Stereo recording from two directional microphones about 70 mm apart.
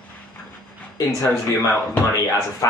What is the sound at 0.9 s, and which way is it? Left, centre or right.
Speech, left.